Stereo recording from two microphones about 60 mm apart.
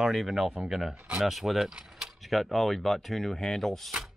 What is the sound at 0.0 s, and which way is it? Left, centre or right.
Speech, centre.